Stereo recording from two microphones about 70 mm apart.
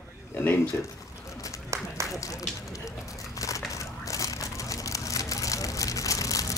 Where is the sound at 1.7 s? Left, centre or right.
Right.